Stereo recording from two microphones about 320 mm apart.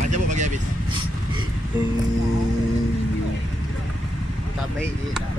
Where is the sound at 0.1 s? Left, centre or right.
Right.